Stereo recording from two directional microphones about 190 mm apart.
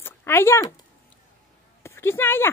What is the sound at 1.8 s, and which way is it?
Speech, 10° left (ahead or behind).